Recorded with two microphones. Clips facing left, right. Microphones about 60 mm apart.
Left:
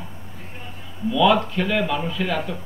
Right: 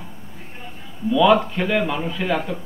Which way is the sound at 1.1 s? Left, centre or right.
Centre.